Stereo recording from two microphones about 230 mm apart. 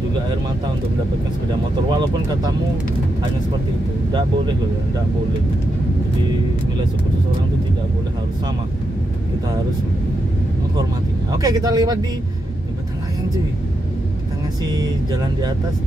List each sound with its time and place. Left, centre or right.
1.9 s speech: centre
11.3 s speech: centre
14.6 s speech: centre